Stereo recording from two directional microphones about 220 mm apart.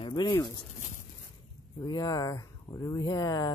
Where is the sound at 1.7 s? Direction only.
20° left (ahead or behind).